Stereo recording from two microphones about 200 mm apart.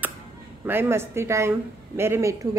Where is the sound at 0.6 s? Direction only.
10° right (ahead or behind).